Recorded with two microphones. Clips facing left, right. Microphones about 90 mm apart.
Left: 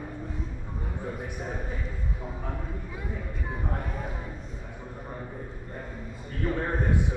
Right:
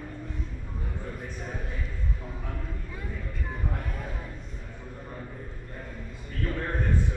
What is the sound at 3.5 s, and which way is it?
Speech, 10° left (ahead or behind).